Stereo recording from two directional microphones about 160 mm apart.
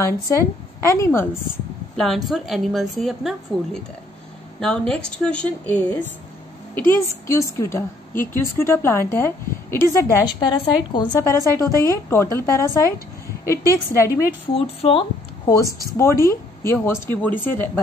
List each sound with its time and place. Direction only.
0.8 s a woman's voice: 20° left (ahead or behind)
2.0 s a woman's voice: centre (ahead or behind); by 10.2 s 15° left (ahead or behind)
10.4 s a woman's voice: 30° left (ahead or behind)
14.5 s speech: 35° left (ahead or behind)
15.4 s speech: 20° left (ahead or behind)